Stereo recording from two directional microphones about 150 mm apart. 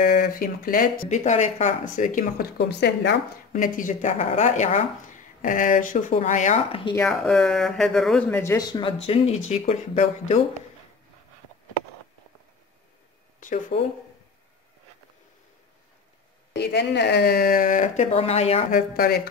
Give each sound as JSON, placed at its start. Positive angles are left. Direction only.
{"t": 0.0, "sound": "speech", "side_deg": 70}
{"t": 1.0, "sound": "speech", "side_deg": 50}
{"t": 3.5, "sound": "speech", "side_deg": 65}
{"t": 6.7, "sound": "speech", "side_deg": 35}
{"t": 7.1, "sound": "speech", "side_deg": 5}
{"t": 8.7, "sound": "speech", "side_deg": 35}
{"t": 13.7, "sound": "speech", "side_deg": 40}
{"t": 16.5, "sound": "speech", "side_deg": 90}
{"t": 18.1, "sound": "speech", "side_deg": 45}
{"t": 18.7, "sound": "speech", "side_deg": 85}